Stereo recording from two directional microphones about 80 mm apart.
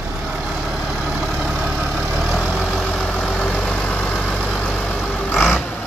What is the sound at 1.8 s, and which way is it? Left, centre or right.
Vehicle, centre.